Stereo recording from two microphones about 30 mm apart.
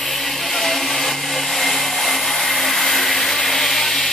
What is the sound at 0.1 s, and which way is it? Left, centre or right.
Blender, centre.